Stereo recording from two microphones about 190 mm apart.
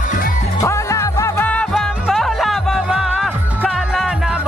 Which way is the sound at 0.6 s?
15° left (ahead or behind).